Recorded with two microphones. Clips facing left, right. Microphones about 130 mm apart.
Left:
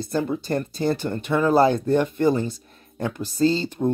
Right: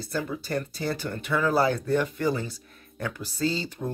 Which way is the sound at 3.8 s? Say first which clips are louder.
Left 13 dB; 35° left (ahead or behind).